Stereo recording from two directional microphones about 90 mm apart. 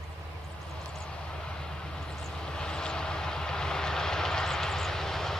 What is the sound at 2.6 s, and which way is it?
Vehicle, 10° left (ahead or behind).